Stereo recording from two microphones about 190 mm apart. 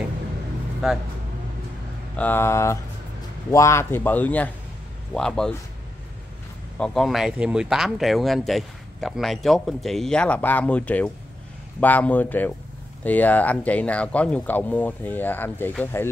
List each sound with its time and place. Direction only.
2.1 s speech: 10° left (ahead or behind)
6.8 s speech: centre (ahead or behind)